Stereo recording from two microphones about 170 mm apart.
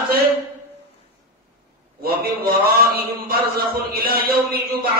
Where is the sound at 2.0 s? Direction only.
65° right (ahead or behind).